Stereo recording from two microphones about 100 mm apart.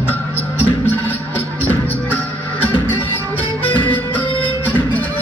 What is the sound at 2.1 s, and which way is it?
Music, 20° left (ahead or behind).